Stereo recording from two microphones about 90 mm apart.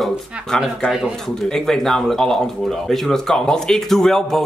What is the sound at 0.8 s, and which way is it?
Speech, 5° right (ahead or behind).